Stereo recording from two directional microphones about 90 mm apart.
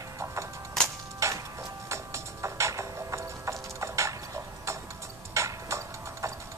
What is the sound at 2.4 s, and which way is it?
Music, 35° right (ahead or behind).